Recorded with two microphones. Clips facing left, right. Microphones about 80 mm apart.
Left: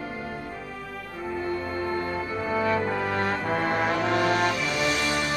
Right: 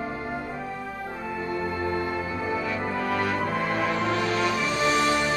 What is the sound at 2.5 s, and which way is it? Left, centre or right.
Music, left.